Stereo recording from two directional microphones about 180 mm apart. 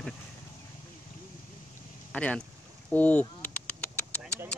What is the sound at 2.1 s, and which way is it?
Speech, 5° left (ahead or behind).